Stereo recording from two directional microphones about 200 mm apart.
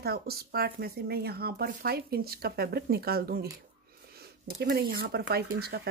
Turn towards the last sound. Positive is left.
turn(degrees=-50)  # may be behind; listen again after turning